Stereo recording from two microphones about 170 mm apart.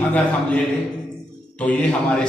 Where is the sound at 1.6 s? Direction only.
10° left (ahead or behind).